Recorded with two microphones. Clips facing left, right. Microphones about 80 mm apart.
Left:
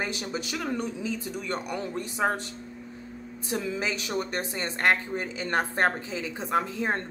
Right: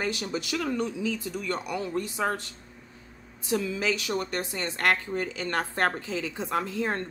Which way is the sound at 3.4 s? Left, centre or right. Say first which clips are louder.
Right 3 dB; left.